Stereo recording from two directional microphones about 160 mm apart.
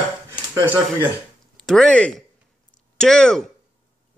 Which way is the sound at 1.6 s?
Centre (ahead or behind).